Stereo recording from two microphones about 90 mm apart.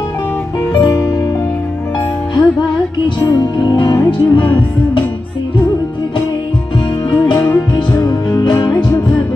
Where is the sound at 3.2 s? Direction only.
55° left (ahead or behind).